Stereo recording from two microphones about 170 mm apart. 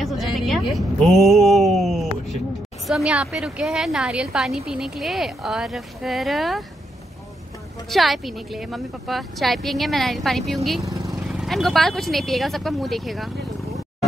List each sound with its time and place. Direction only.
0.0 s a sound: centre (ahead or behind)
2.9 s a woman's voice: 5° right (ahead or behind)
7.9 s a woman's voice: centre (ahead or behind)
10.9 s vehicle: 20° right (ahead or behind)
11.2 s a woman's voice: centre (ahead or behind)